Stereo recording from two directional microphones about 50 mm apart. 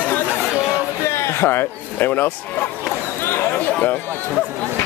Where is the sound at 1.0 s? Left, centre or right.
Left.